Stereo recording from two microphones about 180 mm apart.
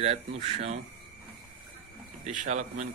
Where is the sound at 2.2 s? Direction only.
45° right (ahead or behind).